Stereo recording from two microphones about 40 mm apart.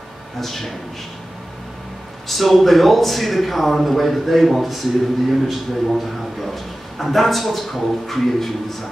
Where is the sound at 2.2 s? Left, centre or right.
Centre.